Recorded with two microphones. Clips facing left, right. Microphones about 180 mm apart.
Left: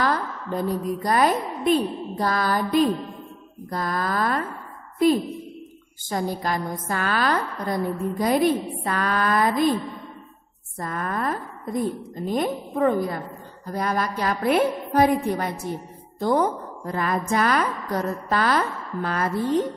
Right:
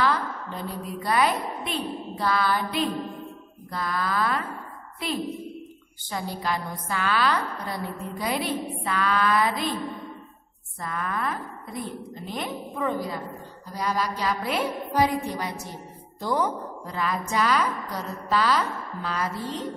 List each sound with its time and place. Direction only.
0.0 s a woman's voice: 45° left (ahead or behind)
10.8 s a woman's voice: 45° left (ahead or behind)